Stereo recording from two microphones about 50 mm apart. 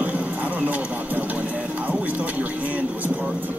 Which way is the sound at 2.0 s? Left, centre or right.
Right.